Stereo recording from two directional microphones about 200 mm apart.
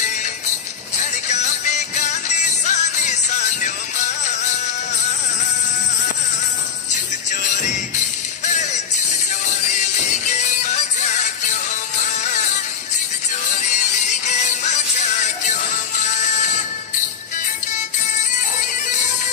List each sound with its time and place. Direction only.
2.0 s music: 35° left (ahead or behind)
14.7 s music: 35° left (ahead or behind)